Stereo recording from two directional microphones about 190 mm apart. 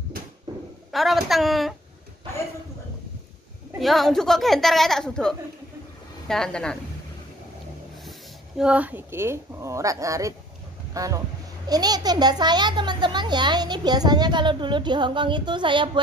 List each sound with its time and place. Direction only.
0.9 s a woman's voice: centre (ahead or behind)
3.8 s a woman's voice: centre (ahead or behind)
8.0 s a child's voice: centre (ahead or behind); by 16.0 s 25° right (ahead or behind)